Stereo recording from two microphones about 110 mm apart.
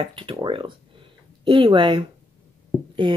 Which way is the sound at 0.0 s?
50° right (ahead or behind).